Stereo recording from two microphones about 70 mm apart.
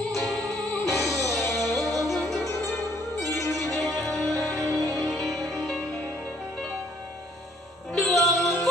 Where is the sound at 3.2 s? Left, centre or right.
Left.